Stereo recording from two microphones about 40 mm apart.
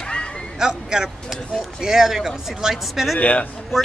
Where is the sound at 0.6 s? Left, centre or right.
Centre.